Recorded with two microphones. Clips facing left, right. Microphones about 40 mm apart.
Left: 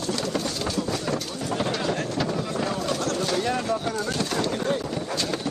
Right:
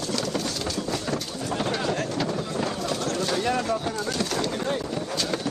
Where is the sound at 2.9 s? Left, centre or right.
Left.